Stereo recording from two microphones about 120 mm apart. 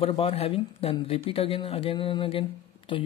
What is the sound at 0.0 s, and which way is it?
Speech, 50° left (ahead or behind).